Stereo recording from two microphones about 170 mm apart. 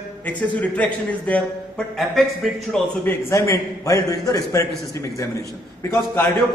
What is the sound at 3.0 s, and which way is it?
A man's voice, 15° left (ahead or behind).